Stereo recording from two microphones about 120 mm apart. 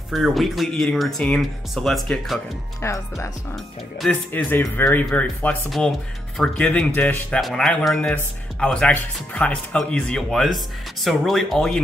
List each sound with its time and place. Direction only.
0.1 s speech: centre (ahead or behind)
2.8 s speech: 25° left (ahead or behind)
5.7 s speech: centre (ahead or behind)